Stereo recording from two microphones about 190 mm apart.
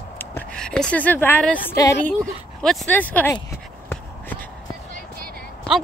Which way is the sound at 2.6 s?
Centre (ahead or behind).